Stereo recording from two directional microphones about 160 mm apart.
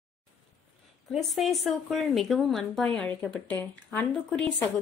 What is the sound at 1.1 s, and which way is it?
Speech, centre (ahead or behind).